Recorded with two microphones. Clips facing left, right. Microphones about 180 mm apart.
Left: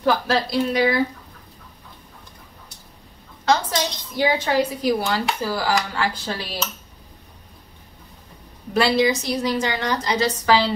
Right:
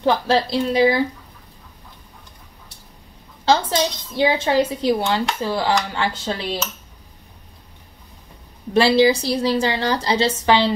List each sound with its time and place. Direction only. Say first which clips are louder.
0.0 s a woman's voice: right 2 dB; 30° right (ahead or behind)
3.4 s a woman's voice: right 3 dB; 30° right (ahead or behind)
8.7 s a woman's voice: right 4 dB; 30° right (ahead or behind)